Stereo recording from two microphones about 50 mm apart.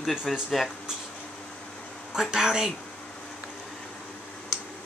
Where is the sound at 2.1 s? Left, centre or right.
Centre.